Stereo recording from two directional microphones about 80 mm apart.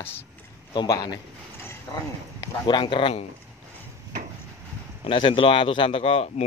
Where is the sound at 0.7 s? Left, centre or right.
Left.